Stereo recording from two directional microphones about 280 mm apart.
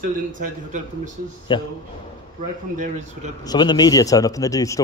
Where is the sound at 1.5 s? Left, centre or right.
Centre.